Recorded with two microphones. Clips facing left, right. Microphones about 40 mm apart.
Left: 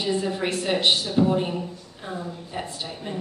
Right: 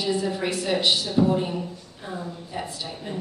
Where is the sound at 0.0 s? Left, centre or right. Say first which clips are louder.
Even; left.